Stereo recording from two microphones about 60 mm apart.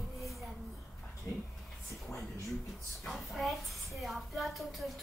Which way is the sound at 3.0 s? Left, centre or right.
Centre.